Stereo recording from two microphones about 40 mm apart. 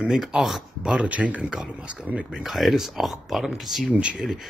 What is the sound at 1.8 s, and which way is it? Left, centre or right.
Speech, right.